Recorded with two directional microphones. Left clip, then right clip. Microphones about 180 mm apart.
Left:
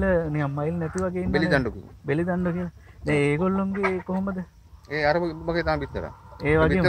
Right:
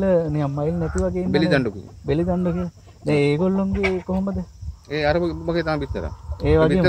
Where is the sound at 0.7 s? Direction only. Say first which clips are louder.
Right 4 dB; 45° left (ahead or behind).